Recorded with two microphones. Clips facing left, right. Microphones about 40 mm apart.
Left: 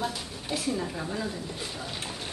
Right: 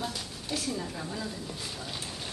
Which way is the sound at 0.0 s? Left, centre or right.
Centre.